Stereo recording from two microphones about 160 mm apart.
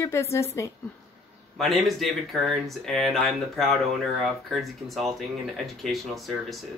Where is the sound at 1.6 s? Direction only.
Centre (ahead or behind).